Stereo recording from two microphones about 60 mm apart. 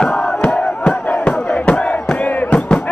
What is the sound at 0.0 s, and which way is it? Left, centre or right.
Crowd, centre.